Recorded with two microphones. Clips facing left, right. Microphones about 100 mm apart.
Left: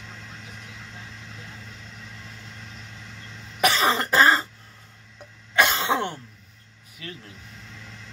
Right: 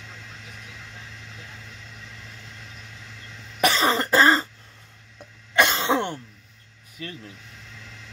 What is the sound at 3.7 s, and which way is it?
Cough, 10° left (ahead or behind).